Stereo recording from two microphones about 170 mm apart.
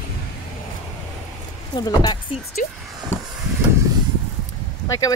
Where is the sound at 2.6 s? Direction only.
50° left (ahead or behind).